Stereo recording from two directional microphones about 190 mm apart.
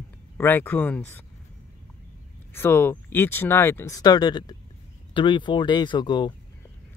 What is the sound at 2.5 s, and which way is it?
Speech, 10° left (ahead or behind).